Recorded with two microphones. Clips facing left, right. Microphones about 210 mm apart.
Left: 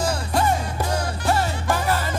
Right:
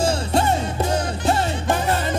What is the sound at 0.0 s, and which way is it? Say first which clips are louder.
Music: right 3 dB; 25° right (ahead or behind).